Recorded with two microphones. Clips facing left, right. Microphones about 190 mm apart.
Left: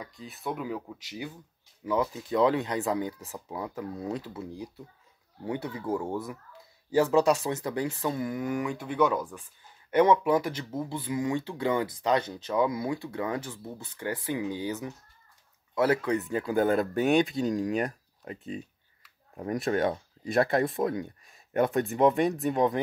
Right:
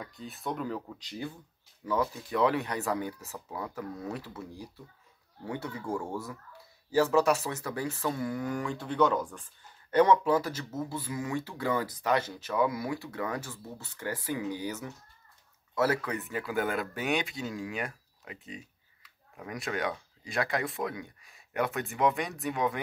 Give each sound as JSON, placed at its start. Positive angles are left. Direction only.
{"t": 0.0, "sound": "speech", "side_deg": 0}
{"t": 1.9, "sound": "speech", "side_deg": 20}
{"t": 20.2, "sound": "speech", "side_deg": 55}
{"t": 20.8, "sound": "speech", "side_deg": 45}